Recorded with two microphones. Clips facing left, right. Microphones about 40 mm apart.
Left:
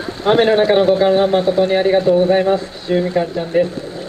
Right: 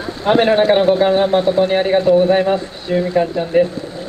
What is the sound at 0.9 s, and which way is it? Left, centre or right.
Speech, centre.